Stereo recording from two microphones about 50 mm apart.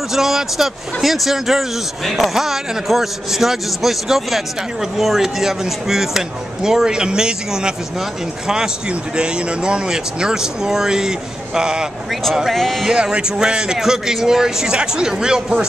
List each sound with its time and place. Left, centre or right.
0.1 s speech: centre
12.1 s speech: centre
12.8 s speech: centre